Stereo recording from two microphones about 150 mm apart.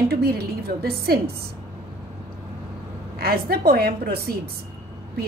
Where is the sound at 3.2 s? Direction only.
90° right.